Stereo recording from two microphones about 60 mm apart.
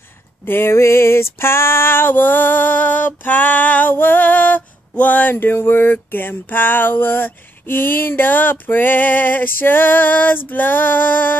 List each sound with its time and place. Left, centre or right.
0.5 s female singing: left